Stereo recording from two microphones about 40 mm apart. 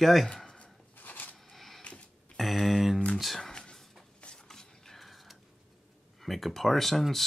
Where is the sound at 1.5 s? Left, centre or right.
Centre.